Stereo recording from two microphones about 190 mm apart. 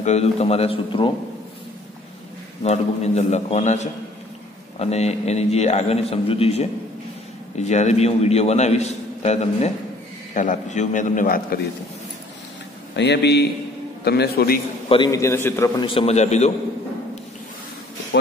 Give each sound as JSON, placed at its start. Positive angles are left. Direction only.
{"t": 0.0, "sound": "a man's voice", "side_deg": 35}
{"t": 2.6, "sound": "a man's voice", "side_deg": 35}
{"t": 12.9, "sound": "speech", "side_deg": 65}
{"t": 14.9, "sound": "a man's voice", "side_deg": 20}
{"t": 15.8, "sound": "a man's voice", "side_deg": 30}